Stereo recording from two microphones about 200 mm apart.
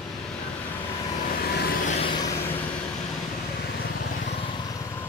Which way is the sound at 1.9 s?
25° left (ahead or behind).